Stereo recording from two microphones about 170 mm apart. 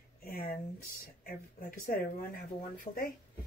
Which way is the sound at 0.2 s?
60° left (ahead or behind).